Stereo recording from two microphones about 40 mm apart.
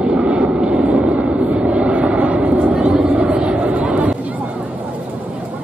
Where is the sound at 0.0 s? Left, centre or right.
Right.